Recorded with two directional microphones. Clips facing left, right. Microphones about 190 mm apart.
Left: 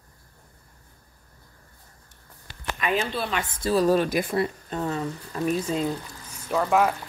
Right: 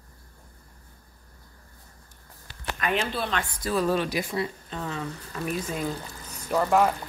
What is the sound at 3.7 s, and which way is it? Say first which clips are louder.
Speech: left 4 dB; 40° left (ahead or behind).